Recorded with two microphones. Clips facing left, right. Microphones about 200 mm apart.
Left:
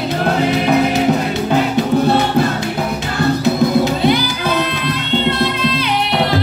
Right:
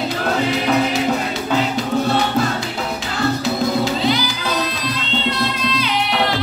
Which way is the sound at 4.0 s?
55° left (ahead or behind).